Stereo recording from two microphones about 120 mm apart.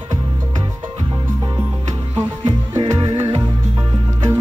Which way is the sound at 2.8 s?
55° right (ahead or behind).